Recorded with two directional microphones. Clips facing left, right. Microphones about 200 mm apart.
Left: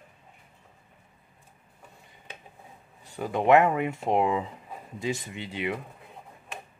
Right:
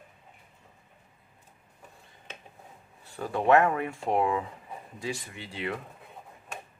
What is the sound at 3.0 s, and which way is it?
Speech, 15° left (ahead or behind).